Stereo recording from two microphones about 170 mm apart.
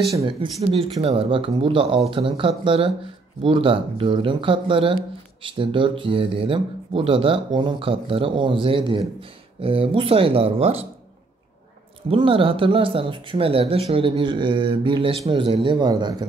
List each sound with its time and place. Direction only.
0.2 s speech: 35° right (ahead or behind)
12.1 s speech: 30° right (ahead or behind)